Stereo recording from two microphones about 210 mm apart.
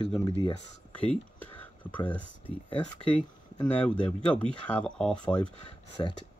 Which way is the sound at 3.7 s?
5° left (ahead or behind).